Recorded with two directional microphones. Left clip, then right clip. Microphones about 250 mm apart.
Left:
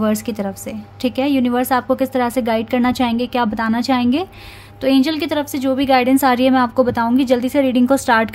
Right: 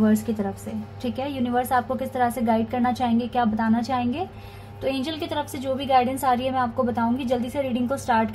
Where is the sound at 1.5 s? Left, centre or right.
Left.